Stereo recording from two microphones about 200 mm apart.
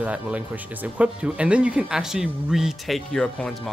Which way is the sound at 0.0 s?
5° right (ahead or behind).